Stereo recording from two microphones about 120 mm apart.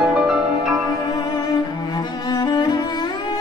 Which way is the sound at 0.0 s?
5° right (ahead or behind).